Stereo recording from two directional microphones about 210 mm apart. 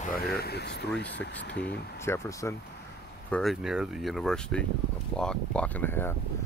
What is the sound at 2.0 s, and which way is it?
Speech, 15° left (ahead or behind).